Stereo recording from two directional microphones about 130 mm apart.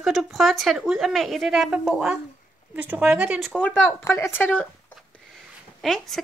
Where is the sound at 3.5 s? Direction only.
10° left (ahead or behind).